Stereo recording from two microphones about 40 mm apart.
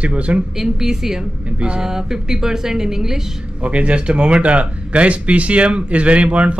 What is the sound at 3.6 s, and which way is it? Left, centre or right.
Speech, right.